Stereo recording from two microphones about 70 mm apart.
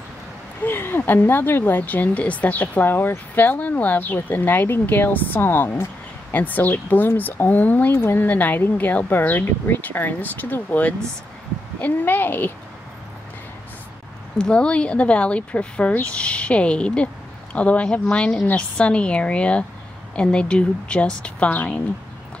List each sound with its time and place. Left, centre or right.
0.7 s speech: left
14.4 s speech: centre